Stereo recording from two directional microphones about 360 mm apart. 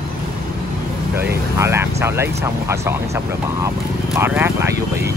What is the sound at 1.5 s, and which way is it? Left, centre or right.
Speech, centre.